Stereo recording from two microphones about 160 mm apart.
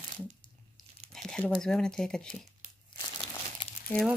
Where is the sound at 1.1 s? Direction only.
Centre (ahead or behind).